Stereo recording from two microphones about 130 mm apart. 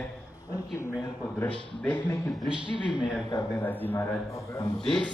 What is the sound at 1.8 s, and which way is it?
Speech, 15° left (ahead or behind).